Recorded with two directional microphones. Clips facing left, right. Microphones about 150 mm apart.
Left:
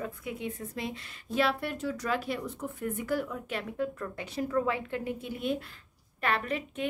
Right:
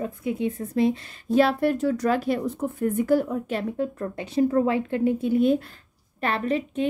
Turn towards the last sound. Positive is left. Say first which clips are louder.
# right 8 dB
turn(degrees=-30)  # may be behind; listen again after turning